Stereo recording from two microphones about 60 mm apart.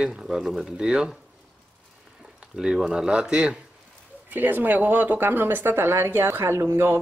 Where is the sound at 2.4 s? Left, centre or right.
Centre.